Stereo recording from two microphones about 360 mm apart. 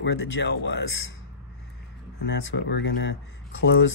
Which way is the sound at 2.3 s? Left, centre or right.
Left.